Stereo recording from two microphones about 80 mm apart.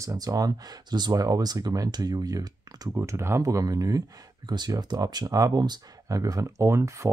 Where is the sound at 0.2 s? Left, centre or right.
Right.